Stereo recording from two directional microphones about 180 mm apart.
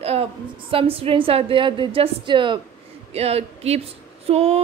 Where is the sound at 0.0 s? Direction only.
35° right (ahead or behind).